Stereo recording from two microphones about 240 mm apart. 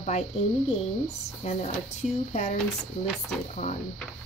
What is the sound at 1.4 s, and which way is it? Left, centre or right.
Speech, left.